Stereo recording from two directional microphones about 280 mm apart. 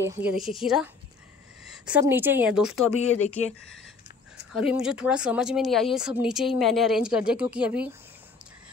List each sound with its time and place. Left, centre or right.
0.3 s speech: centre
2.9 s speech: left
4.5 s speech: centre